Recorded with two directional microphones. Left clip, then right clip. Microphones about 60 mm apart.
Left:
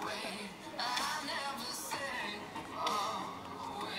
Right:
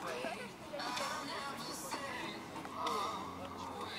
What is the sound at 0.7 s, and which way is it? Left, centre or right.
Music, left.